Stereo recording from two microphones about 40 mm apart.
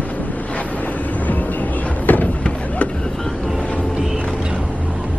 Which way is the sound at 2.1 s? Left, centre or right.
Left.